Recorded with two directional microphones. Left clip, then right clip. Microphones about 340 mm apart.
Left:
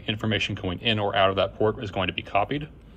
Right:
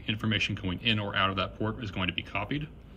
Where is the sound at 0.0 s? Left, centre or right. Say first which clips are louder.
Left 3 dB; centre.